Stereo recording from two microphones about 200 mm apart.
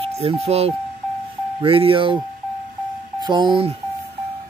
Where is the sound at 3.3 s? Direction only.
20° right (ahead or behind).